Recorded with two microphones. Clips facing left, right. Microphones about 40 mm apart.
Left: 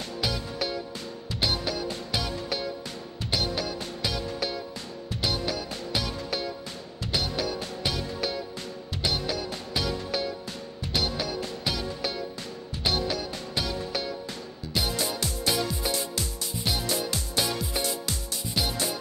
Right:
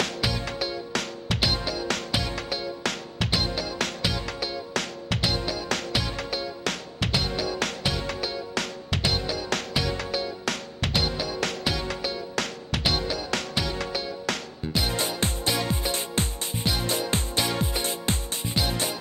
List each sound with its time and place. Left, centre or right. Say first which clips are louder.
0.0 s music: right 4 dB; right
14.8 s music: right 2 dB; right